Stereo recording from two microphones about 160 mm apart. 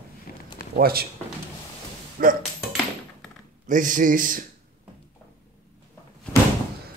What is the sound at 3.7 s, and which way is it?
Speech, 55° right (ahead or behind).